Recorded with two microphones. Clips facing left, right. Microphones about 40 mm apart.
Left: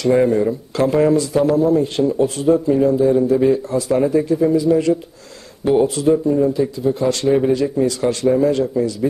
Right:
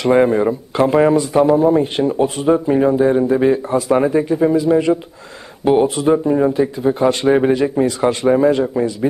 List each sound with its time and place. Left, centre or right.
0.0 s speech: right
6.1 s speech: right